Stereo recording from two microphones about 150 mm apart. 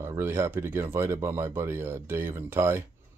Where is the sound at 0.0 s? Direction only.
20° right (ahead or behind).